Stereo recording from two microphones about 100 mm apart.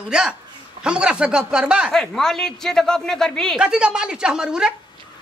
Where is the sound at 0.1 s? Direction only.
10° right (ahead or behind).